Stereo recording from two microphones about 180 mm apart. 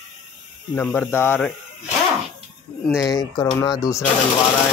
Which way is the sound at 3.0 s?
20° left (ahead or behind).